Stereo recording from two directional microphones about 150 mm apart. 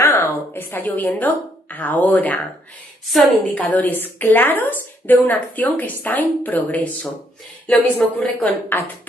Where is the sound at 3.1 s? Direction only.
Centre (ahead or behind).